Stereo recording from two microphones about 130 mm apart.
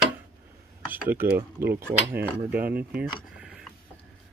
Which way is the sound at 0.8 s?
15° right (ahead or behind).